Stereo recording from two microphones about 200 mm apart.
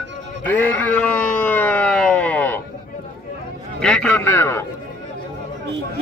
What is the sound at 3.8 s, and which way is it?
Speech, 5° left (ahead or behind).